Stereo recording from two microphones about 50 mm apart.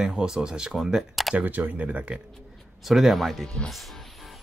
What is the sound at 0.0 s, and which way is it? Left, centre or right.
Speech, centre.